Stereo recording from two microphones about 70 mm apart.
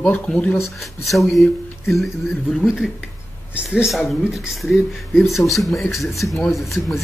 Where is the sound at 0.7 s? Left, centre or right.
Centre.